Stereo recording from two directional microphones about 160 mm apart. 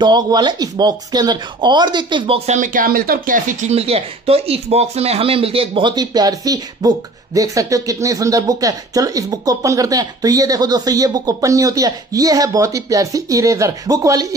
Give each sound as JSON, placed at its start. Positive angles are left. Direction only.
{"t": 0.0, "sound": "speech", "side_deg": -30}
{"t": 3.7, "sound": "speech", "side_deg": -40}